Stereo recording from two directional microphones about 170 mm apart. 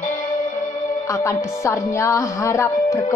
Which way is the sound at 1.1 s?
15° left (ahead or behind).